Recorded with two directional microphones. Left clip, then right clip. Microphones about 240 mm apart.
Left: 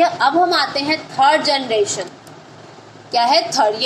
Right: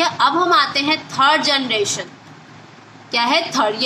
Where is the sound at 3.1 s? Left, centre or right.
Right.